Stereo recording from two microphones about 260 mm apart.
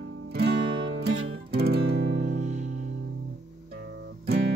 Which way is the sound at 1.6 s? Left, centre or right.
Right.